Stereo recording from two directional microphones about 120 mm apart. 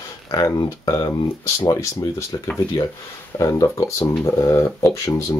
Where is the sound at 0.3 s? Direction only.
30° left (ahead or behind).